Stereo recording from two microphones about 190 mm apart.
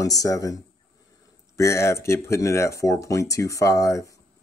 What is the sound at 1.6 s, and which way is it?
Speech, 15° left (ahead or behind).